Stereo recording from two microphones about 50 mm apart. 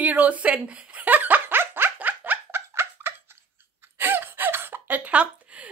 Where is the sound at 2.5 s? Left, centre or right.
Right.